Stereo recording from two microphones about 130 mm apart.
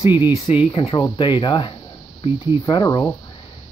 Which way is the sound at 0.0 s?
40° left (ahead or behind).